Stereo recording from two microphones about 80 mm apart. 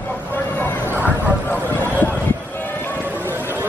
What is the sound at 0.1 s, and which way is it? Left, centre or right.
Vehicle, left.